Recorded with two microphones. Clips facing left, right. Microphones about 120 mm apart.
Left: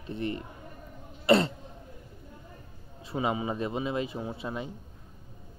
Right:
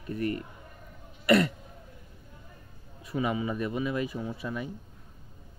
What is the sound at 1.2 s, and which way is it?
Throat clearing, 30° left (ahead or behind).